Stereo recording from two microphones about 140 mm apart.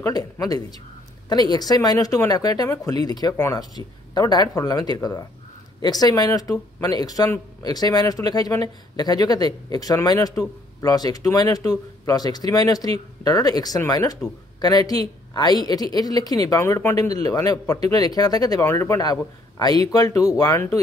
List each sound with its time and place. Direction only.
0.0 s speech: 25° left (ahead or behind)